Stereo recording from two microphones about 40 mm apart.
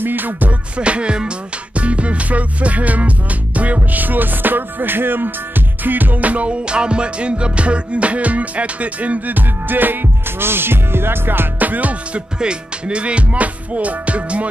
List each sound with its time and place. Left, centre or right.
0.0 s music: right
0.5 s music: right
10.4 s music: right
11.6 s music: right
12.4 s music: right